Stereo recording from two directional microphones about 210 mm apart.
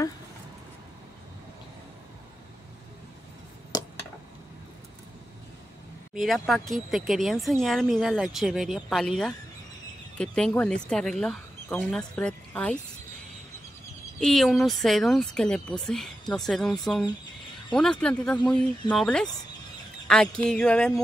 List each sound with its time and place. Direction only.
3.7 s a sound: 20° left (ahead or behind)
6.1 s speech: centre (ahead or behind)
14.2 s speech: centre (ahead or behind)